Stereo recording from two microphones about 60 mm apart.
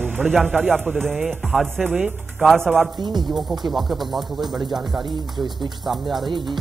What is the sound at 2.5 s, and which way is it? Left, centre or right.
Speech, centre.